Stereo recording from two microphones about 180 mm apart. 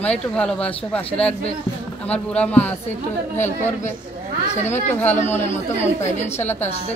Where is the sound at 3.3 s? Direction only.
40° left (ahead or behind).